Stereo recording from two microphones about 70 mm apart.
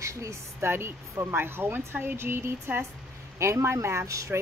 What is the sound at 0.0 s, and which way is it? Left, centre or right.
Speech, right.